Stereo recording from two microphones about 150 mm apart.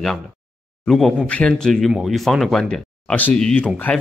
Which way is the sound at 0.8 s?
Centre (ahead or behind).